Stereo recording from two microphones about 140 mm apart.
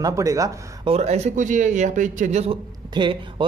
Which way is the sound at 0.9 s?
50° right (ahead or behind).